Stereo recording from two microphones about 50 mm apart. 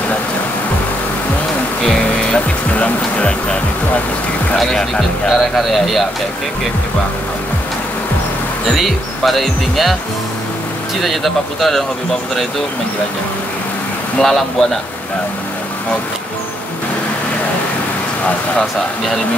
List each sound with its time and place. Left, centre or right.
1.8 s music: centre
2.3 s speech: left
4.6 s speech: centre
5.3 s speech: centre
8.6 s speech: centre
11.0 s speech: centre
14.2 s speech: centre